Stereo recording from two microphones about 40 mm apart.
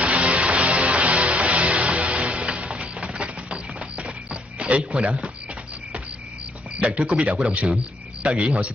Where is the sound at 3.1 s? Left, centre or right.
Right.